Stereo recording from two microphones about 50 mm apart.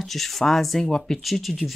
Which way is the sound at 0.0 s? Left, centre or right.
Centre.